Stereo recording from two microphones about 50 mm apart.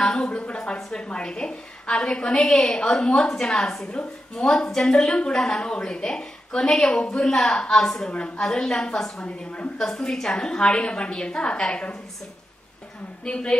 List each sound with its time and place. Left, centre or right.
0.0 s a sound: centre
0.9 s a woman's voice: centre
8.1 s a woman's voice: left
9.8 s a woman's voice: centre
13.2 s a woman's voice: centre